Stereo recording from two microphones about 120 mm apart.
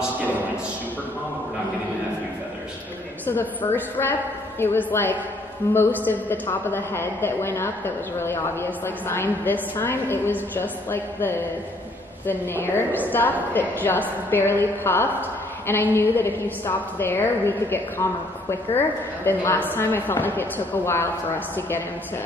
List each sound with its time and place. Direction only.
3.3 s a woman's voice: 15° left (ahead or behind)